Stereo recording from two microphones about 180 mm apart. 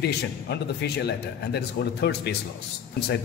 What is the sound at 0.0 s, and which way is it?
A man's voice, 65° left (ahead or behind).